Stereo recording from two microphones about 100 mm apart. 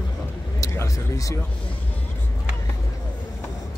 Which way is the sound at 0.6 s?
30° left (ahead or behind).